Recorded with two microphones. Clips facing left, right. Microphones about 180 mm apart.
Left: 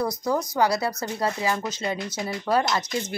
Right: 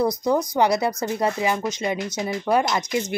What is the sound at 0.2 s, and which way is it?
Speech, 20° right (ahead or behind).